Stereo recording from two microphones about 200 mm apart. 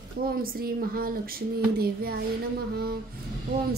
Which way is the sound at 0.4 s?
50° right (ahead or behind).